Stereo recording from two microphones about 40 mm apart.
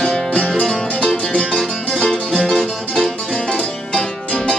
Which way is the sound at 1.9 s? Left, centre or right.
Centre.